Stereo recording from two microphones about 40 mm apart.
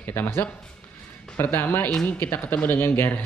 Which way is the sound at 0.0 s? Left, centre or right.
Left.